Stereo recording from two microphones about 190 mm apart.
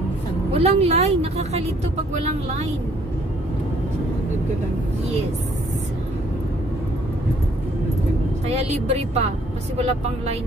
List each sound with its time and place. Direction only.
0.5 s speech: 35° right (ahead or behind)
8.5 s speech: 35° right (ahead or behind)